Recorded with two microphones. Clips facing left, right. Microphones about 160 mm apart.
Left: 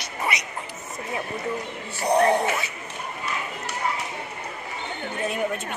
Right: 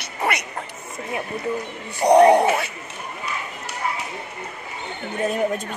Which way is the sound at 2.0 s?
65° right (ahead or behind).